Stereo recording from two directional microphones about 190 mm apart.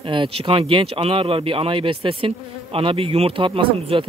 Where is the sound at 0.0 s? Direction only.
25° right (ahead or behind).